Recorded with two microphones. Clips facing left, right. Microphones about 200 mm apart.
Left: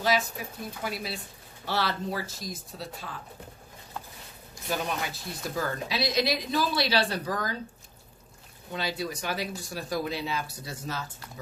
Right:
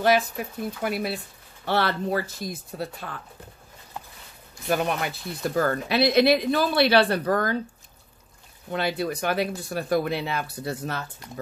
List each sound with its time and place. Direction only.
0.0 s speech: 60° right (ahead or behind)
4.6 s speech: 60° right (ahead or behind)
8.7 s speech: 60° right (ahead or behind)